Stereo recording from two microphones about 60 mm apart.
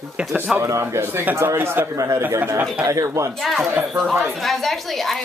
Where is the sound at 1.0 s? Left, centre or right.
Right.